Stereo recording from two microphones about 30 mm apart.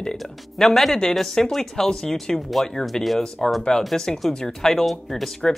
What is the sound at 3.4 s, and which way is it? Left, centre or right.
Speech, centre.